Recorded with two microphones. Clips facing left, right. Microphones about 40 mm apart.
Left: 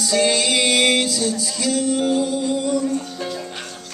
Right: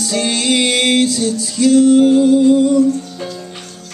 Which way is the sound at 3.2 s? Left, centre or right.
Left.